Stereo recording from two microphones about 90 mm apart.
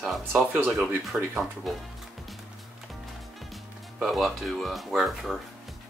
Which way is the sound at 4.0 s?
Centre (ahead or behind).